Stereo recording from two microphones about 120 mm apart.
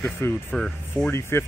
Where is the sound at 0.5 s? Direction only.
5° left (ahead or behind).